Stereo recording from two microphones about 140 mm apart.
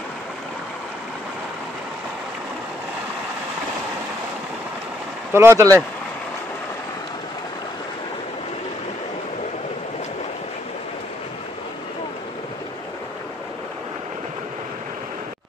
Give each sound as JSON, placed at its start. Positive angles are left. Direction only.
{"t": 5.3, "sound": "speech", "side_deg": -20}